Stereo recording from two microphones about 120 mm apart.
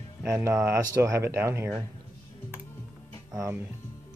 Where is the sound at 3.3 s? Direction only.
20° right (ahead or behind).